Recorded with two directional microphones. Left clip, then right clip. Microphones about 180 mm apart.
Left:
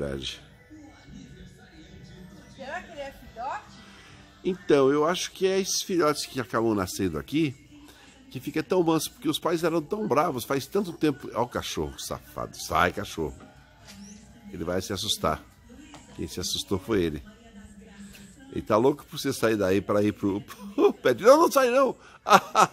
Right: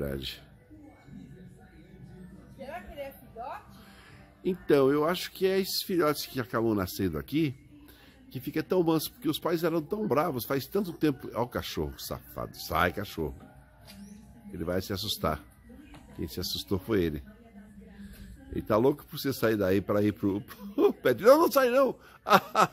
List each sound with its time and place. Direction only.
0.0 s speech: centre (ahead or behind)
2.6 s a sound: 40° right (ahead or behind)
4.4 s speech: centre (ahead or behind)
14.5 s speech: 5° right (ahead or behind)
18.5 s speech: centre (ahead or behind)